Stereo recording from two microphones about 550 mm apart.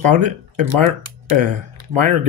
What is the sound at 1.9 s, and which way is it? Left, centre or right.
Speech, right.